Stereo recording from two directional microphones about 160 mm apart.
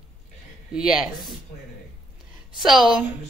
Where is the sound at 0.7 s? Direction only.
5° right (ahead or behind).